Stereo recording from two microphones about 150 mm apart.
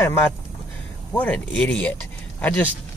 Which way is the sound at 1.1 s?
10° left (ahead or behind).